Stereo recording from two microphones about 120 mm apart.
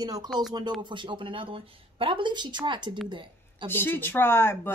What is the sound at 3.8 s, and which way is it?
Speech, 15° left (ahead or behind).